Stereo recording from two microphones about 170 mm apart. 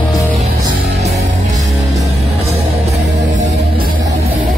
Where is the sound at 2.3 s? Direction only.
40° right (ahead or behind).